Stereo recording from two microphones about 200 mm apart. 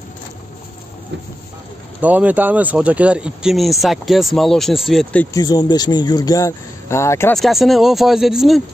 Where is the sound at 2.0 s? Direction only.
10° right (ahead or behind).